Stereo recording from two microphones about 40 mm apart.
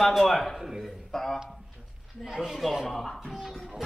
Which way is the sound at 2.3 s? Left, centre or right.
Centre.